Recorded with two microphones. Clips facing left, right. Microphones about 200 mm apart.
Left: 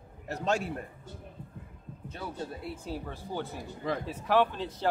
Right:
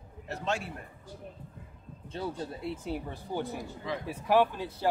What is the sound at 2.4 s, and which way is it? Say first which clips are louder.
Speech: right 2 dB; 25° right (ahead or behind).